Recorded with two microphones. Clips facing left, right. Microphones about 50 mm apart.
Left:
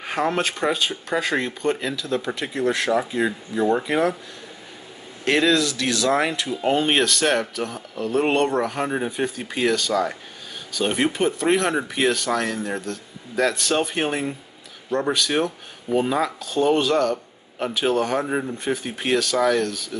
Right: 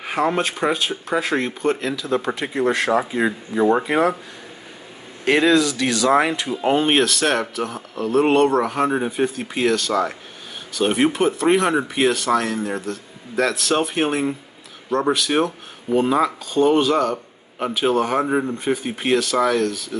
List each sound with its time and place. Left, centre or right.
0.0 s speech: centre
2.0 s speech: right
5.2 s speech: centre
6.6 s speech: centre